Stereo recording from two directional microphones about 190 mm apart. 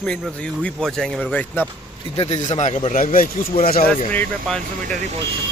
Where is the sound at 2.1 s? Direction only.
35° left (ahead or behind).